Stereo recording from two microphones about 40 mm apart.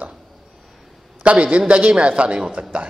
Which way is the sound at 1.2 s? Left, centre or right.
Right.